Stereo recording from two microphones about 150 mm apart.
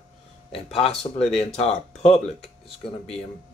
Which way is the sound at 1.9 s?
45° left (ahead or behind).